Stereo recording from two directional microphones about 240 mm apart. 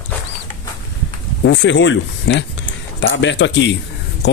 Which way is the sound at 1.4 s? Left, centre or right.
Left.